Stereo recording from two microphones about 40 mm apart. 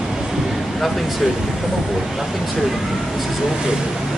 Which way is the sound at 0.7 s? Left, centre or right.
Centre.